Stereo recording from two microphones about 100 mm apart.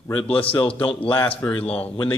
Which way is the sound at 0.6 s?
65° left (ahead or behind).